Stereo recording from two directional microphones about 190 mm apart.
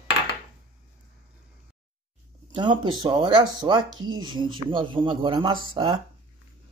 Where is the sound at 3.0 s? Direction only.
25° right (ahead or behind).